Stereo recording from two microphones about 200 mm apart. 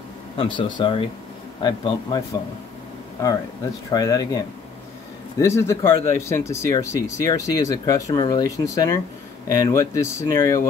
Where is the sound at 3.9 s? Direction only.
15° left (ahead or behind).